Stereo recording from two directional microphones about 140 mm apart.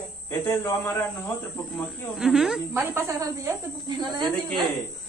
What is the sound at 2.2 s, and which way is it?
Speech, 5° right (ahead or behind).